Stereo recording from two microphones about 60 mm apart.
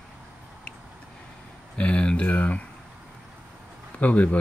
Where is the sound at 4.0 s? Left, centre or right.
Left.